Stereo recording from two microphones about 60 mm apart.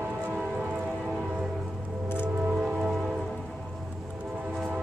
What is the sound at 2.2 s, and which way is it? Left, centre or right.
Music, centre.